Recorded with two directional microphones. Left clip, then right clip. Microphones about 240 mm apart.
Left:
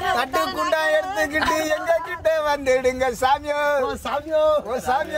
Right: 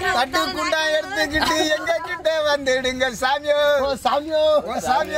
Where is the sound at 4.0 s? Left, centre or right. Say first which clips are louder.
Right 4 dB; centre.